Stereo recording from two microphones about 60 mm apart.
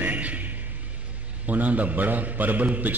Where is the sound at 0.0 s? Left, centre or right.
Right.